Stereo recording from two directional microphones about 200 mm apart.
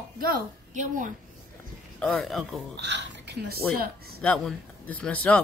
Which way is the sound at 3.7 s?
50° right (ahead or behind).